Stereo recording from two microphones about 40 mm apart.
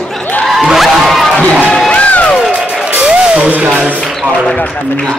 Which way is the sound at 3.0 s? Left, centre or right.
Right.